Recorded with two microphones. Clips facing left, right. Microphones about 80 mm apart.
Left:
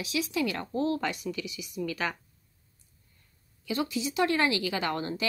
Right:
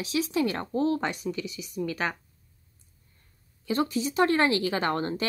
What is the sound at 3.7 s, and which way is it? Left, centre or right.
A woman's voice, right.